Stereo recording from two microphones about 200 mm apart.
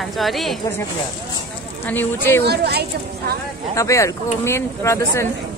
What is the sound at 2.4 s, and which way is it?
Speech, 55° right (ahead or behind).